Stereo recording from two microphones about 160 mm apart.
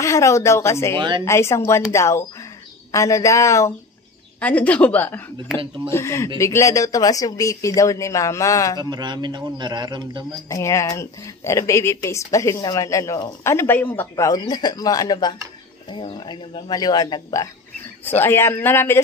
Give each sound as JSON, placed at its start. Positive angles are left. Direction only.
{"t": 0.0, "sound": "a woman's voice", "side_deg": 20}
{"t": 0.9, "sound": "a man's voice", "side_deg": -30}
{"t": 1.2, "sound": "a woman's voice", "side_deg": 15}
{"t": 8.7, "sound": "a man's voice", "side_deg": -25}
{"t": 10.5, "sound": "a woman's voice", "side_deg": 20}